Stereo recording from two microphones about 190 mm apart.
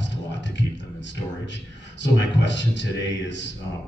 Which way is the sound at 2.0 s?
70° left (ahead or behind).